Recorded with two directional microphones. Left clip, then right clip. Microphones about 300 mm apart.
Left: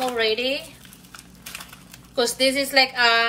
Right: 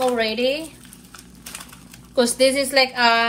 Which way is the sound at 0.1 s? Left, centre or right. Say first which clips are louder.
Right 2 dB; centre.